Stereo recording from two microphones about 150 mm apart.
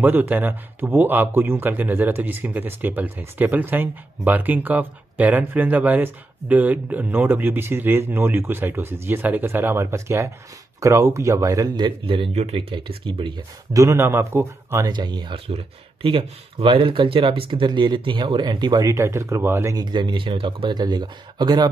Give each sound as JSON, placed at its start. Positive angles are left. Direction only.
{"t": 0.0, "sound": "speech", "side_deg": -10}
{"t": 13.7, "sound": "speech", "side_deg": -20}
{"t": 14.9, "sound": "speech", "side_deg": -30}